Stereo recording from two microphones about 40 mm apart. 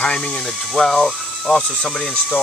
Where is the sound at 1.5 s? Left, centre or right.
Centre.